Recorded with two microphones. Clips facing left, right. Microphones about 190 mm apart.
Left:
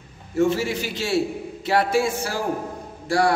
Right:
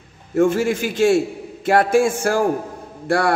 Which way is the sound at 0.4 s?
50° right (ahead or behind).